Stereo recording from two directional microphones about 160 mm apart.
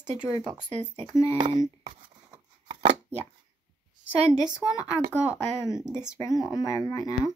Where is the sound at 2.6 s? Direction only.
30° right (ahead or behind).